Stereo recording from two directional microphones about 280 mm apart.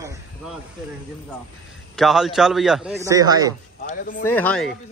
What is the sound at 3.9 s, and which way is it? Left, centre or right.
Speech, left.